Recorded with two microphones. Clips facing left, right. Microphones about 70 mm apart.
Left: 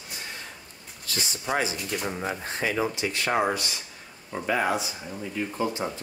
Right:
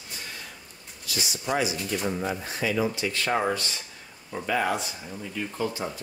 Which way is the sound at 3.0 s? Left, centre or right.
Centre.